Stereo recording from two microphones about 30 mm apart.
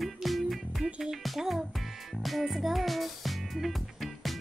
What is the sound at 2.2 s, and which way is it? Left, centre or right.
Music, centre.